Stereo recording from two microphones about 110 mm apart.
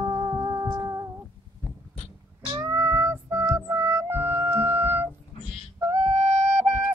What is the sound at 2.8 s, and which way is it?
Music, 20° right (ahead or behind).